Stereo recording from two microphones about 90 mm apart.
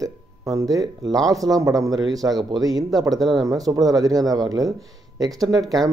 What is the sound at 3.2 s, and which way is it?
Speech, centre (ahead or behind).